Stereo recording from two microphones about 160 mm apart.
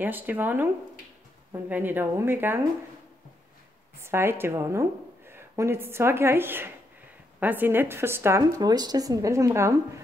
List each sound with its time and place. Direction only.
0.0 s a woman's voice: 10° right (ahead or behind)
4.0 s a woman's voice: 15° right (ahead or behind)